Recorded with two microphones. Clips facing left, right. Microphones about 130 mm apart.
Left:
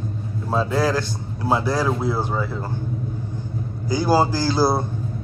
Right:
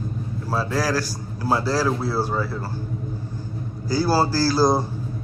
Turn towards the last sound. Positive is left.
turn(degrees=20)  # may be behind; listen again after turning